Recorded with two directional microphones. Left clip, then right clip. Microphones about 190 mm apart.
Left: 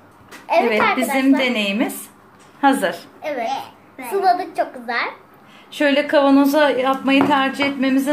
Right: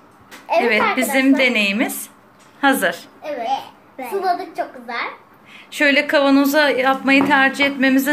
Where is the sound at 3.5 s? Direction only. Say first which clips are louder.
Right 3 dB; 20° right (ahead or behind).